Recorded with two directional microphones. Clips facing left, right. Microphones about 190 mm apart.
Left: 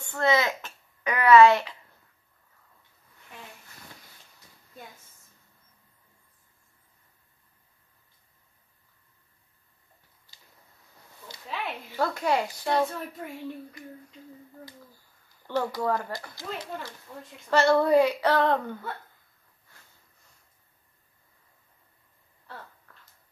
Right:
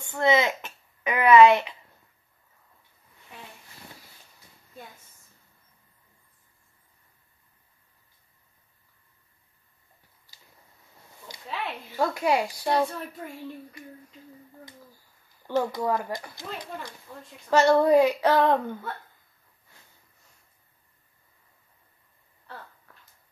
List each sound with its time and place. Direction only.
0.0 s a sound: 20° right (ahead or behind)
11.4 s a sound: centre (ahead or behind)
12.0 s speech: 10° right (ahead or behind)
12.7 s speech: 5° left (ahead or behind)
15.4 s speech: 15° right (ahead or behind)
16.5 s speech: centre (ahead or behind)
17.5 s speech: 15° right (ahead or behind)